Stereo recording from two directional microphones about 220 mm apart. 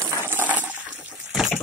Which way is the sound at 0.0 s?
10° left (ahead or behind).